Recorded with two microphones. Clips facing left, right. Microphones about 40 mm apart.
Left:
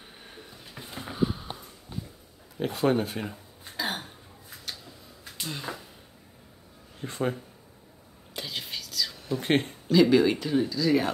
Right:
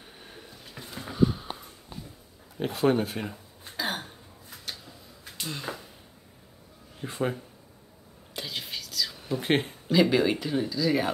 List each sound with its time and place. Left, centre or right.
0.7 s sniff: centre
1.3 s sniff: centre
2.5 s a sound: centre
7.0 s speech: centre
8.4 s whispering: centre
9.2 s speech: centre